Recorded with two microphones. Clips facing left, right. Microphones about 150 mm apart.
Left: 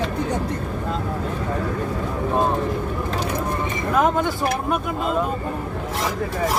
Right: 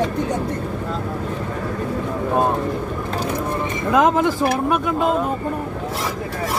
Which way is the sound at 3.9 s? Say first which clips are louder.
Right 4 dB; 90° right.